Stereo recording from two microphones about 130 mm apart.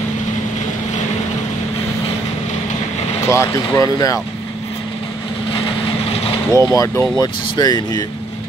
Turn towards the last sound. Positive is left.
turn(degrees=30)  # may be behind; listen again after turning